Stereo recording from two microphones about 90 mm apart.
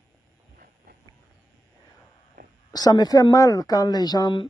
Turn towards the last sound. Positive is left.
turn(degrees=50)  # may be behind; listen again after turning